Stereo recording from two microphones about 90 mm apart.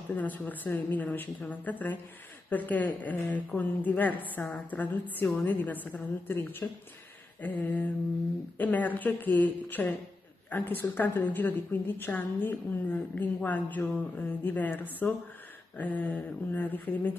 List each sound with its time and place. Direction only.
0.1 s a woman's voice: 20° left (ahead or behind)